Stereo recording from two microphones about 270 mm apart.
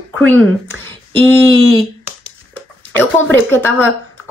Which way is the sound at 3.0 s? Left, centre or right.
Centre.